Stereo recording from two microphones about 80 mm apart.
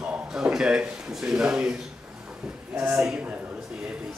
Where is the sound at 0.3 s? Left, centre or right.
Centre.